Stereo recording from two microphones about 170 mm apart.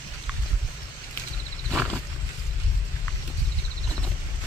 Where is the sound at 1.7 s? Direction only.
5° left (ahead or behind).